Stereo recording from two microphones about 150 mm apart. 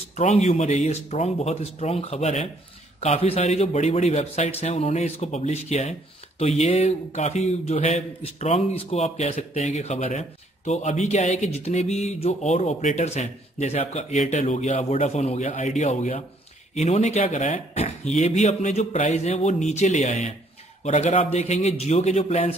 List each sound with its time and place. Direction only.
0.1 s speech: 50° left (ahead or behind)